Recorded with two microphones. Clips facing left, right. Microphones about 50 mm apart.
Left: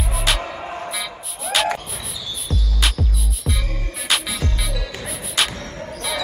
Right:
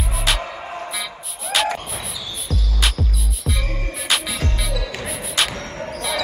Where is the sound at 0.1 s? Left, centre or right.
Centre.